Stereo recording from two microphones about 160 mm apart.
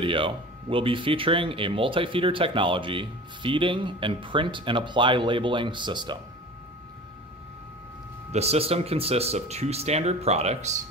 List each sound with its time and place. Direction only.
0.0 s speech: 30° right (ahead or behind)
8.3 s speech: 40° right (ahead or behind)